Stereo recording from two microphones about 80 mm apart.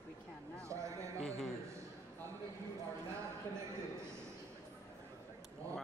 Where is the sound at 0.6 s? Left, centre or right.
Right.